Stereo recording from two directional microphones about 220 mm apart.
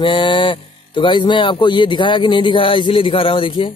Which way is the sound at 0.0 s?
20° left (ahead or behind).